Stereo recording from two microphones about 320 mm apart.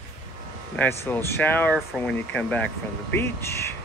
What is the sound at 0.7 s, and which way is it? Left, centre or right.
Speech, centre.